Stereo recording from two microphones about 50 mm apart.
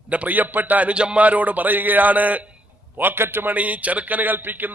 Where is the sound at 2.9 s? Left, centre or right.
Right.